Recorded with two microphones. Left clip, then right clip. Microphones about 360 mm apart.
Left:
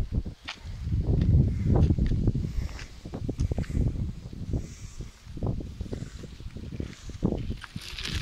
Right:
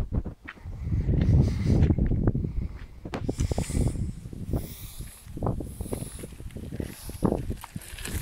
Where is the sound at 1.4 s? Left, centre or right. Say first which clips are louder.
Right 1 dB; right.